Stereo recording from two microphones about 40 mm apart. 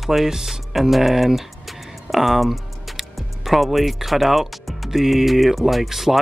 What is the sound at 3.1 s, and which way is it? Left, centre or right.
Speech, centre.